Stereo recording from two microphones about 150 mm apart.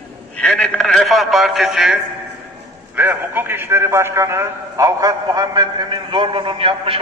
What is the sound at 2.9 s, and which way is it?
A man's voice, 10° right (ahead or behind).